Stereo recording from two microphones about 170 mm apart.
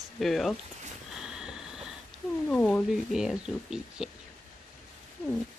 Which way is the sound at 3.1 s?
5° right (ahead or behind).